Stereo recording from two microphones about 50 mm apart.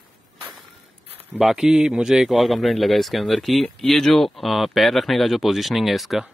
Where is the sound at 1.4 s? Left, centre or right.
Centre.